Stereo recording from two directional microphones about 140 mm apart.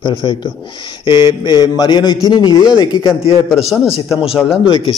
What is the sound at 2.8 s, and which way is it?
Speech, 40° left (ahead or behind).